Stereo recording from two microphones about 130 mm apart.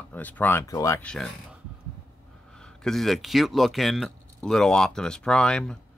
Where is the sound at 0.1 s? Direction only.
15° left (ahead or behind).